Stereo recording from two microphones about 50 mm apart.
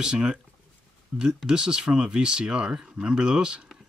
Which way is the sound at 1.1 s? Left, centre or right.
Centre.